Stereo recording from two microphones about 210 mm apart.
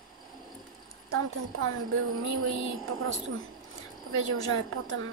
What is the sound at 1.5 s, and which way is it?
A woman's voice, 75° right (ahead or behind).